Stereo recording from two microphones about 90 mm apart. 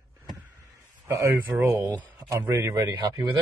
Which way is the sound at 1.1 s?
35° right (ahead or behind).